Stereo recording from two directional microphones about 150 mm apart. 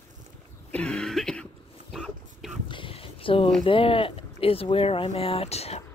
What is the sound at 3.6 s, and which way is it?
Speech, 35° left (ahead or behind).